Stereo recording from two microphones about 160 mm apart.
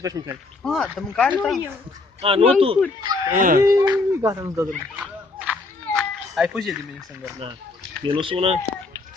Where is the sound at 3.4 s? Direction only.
60° right (ahead or behind).